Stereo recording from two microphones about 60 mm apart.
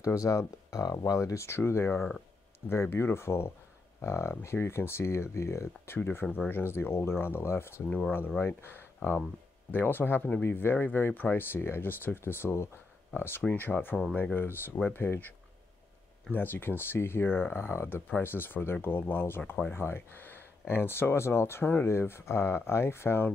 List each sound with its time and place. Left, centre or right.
0.0 s speech: left
5.9 s speech: left
16.3 s speech: left